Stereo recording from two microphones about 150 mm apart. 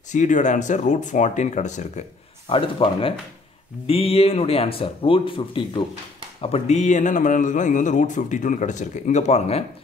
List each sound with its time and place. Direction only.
0.1 s speech: 55° left (ahead or behind)
2.5 s speech: 35° left (ahead or behind)
6.4 s speech: 45° left (ahead or behind)